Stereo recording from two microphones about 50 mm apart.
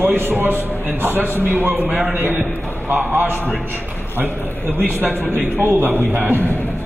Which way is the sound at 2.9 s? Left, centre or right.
Right.